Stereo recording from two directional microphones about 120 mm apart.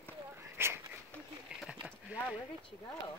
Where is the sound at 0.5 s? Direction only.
20° right (ahead or behind).